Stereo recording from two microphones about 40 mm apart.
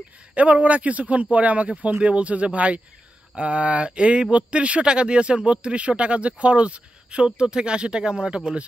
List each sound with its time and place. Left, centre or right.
0.3 s speech: right